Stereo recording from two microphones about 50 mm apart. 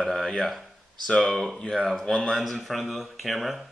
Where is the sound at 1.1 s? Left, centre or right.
Centre.